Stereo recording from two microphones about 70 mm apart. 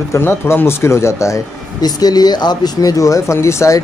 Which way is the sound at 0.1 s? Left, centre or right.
Left.